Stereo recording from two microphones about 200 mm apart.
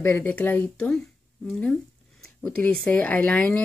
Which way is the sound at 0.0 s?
10° left (ahead or behind).